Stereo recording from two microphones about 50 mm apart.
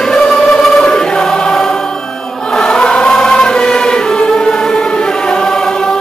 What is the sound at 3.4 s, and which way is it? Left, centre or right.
Music, centre.